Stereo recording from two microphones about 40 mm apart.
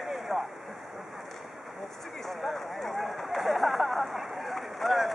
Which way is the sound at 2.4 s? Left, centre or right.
Centre.